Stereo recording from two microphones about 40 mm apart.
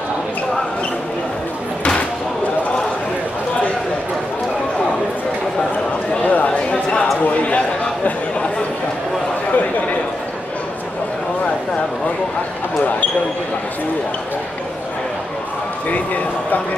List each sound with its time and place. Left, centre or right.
6.2 s chatter: left